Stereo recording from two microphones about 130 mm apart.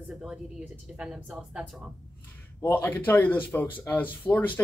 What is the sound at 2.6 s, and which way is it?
A man's voice, 15° left (ahead or behind).